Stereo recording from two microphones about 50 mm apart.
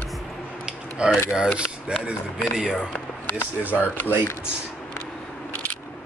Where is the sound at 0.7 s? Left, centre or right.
Centre.